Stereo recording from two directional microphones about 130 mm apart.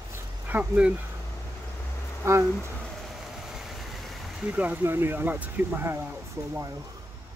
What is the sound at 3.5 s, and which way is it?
Vehicle, centre (ahead or behind).